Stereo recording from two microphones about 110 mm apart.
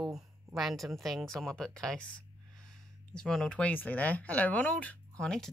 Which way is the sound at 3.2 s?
5° left (ahead or behind).